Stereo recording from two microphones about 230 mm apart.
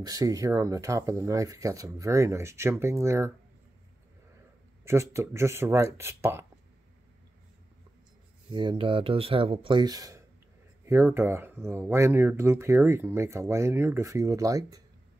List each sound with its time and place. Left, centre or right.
0.0 s speech: centre
4.8 s speech: centre
8.5 s speech: right